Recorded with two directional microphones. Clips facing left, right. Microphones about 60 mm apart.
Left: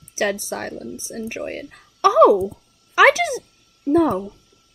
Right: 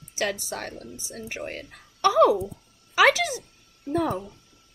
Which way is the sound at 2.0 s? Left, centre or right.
Left.